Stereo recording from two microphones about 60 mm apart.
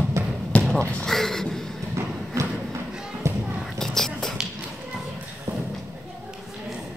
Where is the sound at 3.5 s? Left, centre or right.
Centre.